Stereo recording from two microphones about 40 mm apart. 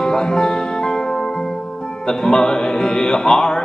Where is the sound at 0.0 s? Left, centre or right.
Centre.